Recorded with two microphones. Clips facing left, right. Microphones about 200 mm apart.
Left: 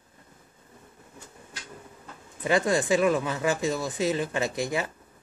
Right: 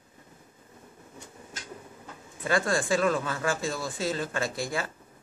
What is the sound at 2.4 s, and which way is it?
Speech, 20° left (ahead or behind).